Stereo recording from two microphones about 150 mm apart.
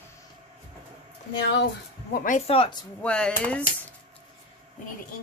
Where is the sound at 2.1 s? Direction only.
60° left (ahead or behind).